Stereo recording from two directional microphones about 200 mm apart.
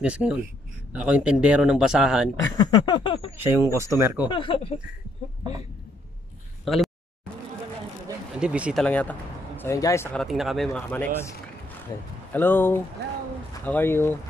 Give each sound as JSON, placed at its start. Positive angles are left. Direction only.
{"t": 0.0, "sound": "speech", "side_deg": -5}
{"t": 2.5, "sound": "a sound", "side_deg": 20}
{"t": 3.3, "sound": "speech", "side_deg": -15}
{"t": 4.3, "sound": "a sound", "side_deg": 25}
{"t": 6.6, "sound": "speech", "side_deg": 0}
{"t": 8.4, "sound": "speech", "side_deg": -5}
{"t": 8.8, "sound": "speech", "side_deg": 10}
{"t": 10.2, "sound": "speech", "side_deg": 0}